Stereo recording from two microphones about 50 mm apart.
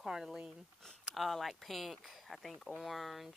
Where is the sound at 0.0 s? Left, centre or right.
Centre.